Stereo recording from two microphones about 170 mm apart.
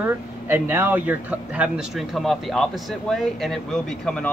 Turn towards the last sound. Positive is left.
turn(degrees=5)  # may be behind; listen again after turning